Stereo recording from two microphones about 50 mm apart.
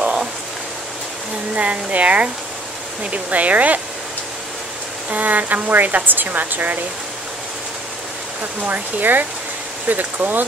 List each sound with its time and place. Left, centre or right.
1.5 s speech: right
5.1 s speech: right
8.4 s speech: right